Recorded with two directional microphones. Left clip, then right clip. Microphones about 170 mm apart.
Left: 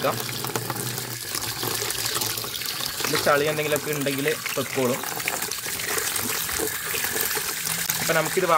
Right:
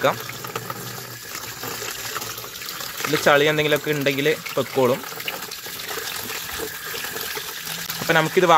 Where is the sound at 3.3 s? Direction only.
35° right (ahead or behind).